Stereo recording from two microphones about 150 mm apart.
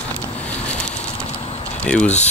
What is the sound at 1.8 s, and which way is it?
Speech, 5° left (ahead or behind).